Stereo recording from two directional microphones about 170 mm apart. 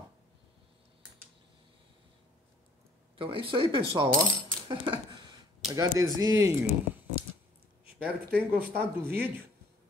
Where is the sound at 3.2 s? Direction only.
30° right (ahead or behind).